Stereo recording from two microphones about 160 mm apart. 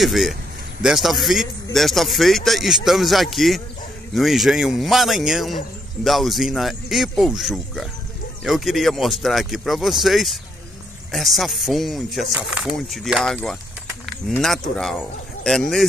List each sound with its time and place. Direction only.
0.0 s a man's voice: centre (ahead or behind)
14.4 s a man's voice: centre (ahead or behind)